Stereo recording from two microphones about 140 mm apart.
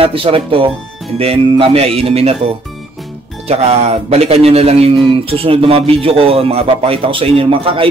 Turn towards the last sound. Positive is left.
turn(degrees=-40)  # may be behind; listen again after turning